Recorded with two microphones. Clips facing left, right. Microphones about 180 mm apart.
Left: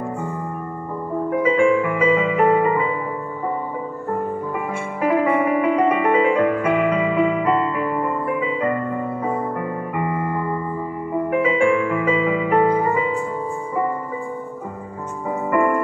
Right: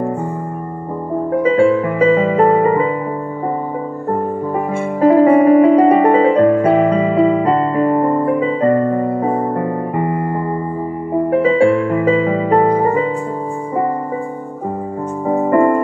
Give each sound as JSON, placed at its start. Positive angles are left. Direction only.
{"t": 1.6, "sound": "music", "side_deg": -35}
{"t": 4.6, "sound": "music", "side_deg": -40}
{"t": 15.2, "sound": "music", "side_deg": -40}